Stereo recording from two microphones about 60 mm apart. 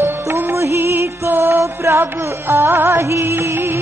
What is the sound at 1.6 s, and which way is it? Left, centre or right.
Music, right.